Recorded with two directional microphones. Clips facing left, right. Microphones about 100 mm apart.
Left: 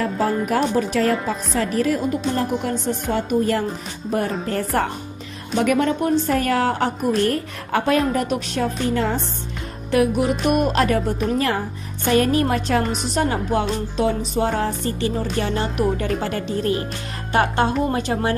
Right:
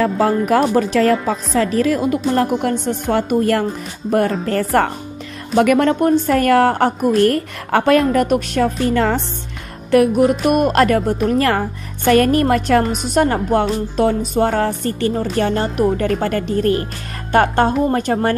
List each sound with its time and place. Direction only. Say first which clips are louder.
0.0 s a woman's voice: right 5 dB; 90° right; by 3.6 s 65° right (ahead or behind)
4.8 s a woman's voice: right 5 dB; 70° right (ahead or behind)
9.8 s a woman's voice: right 6 dB; 50° right (ahead or behind)
12.8 s a woman's voice: right 3 dB; 5° right (ahead or behind)
13.1 s a woman's voice: right 6 dB; 55° right (ahead or behind)